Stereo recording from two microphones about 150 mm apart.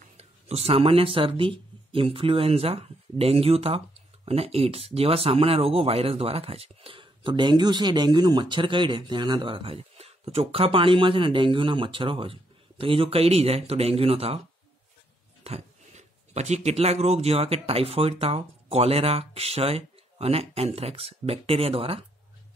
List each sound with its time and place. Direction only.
0.2 s speech: 45° right (ahead or behind)
15.4 s speech: 45° right (ahead or behind)